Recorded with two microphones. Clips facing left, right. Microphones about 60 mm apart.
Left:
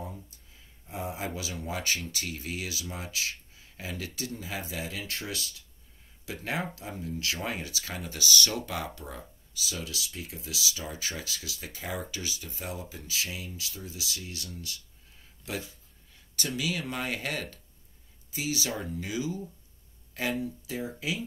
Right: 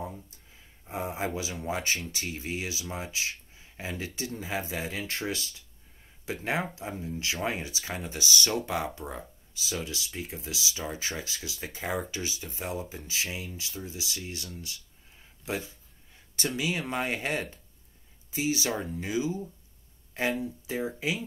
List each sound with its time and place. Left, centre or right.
0.8 s speech: right